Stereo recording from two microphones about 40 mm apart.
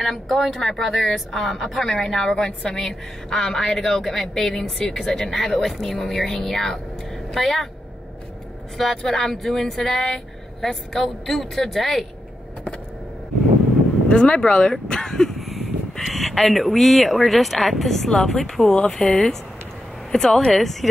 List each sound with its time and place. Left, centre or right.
0.0 s a woman's voice: centre
2.3 s a woman's voice: left; by 6.2 s centre
6.2 s a woman's voice: centre
8.9 s a woman's voice: centre
14.0 s speech: left
14.9 s a woman's voice: centre